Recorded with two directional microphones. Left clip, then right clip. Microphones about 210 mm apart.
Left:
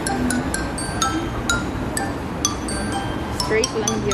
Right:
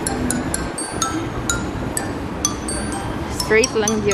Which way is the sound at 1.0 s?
25° left (ahead or behind).